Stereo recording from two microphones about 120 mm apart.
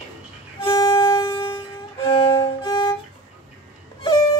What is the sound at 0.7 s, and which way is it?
Music, 30° left (ahead or behind).